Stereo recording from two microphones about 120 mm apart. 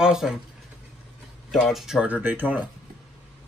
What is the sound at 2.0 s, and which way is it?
Speech, 15° right (ahead or behind).